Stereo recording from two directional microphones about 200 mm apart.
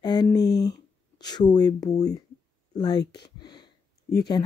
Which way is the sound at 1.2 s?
20° left (ahead or behind).